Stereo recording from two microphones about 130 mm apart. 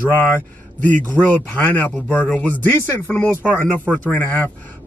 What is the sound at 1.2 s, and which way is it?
Speech, 15° left (ahead or behind).